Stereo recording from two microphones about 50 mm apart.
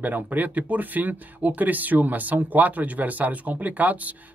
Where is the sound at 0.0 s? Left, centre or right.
Right.